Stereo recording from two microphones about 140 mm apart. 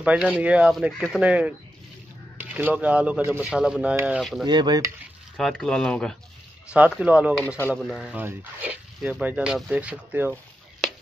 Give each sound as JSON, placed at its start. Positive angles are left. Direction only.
{"t": 0.0, "sound": "speech", "side_deg": -10}
{"t": 4.2, "sound": "speech", "side_deg": 0}
{"t": 4.5, "sound": "speech", "side_deg": -30}
{"t": 5.4, "sound": "speech", "side_deg": 5}
{"t": 6.7, "sound": "speech", "side_deg": -10}
{"t": 7.4, "sound": "speech", "side_deg": 15}
{"t": 8.0, "sound": "speech", "side_deg": -10}